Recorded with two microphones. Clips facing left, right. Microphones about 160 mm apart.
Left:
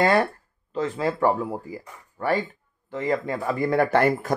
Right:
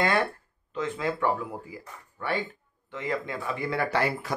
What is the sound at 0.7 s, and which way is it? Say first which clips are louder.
Speech: left 5 dB; 35° left (ahead or behind).